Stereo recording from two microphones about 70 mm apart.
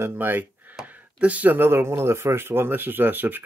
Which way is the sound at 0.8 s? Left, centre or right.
Right.